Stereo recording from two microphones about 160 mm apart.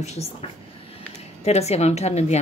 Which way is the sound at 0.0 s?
45° left (ahead or behind).